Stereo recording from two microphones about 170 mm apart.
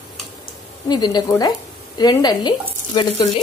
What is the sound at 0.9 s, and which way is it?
Speech, 25° left (ahead or behind).